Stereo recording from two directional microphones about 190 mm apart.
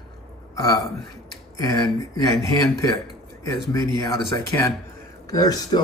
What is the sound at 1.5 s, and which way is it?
Speech, 15° left (ahead or behind).